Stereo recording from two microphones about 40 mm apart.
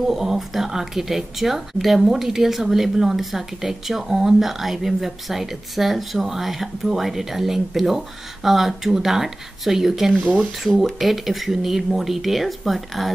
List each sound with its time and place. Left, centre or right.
0.0 s speech: centre
10.2 s speech: right
10.8 s speech: centre